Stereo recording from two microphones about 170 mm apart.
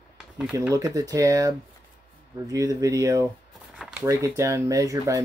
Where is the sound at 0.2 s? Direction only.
5° right (ahead or behind).